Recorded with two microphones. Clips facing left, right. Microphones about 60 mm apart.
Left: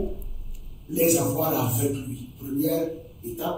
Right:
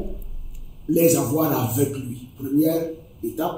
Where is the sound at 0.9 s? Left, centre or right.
Right.